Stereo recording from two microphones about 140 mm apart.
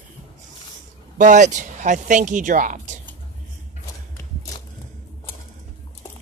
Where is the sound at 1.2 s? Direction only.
60° right (ahead or behind).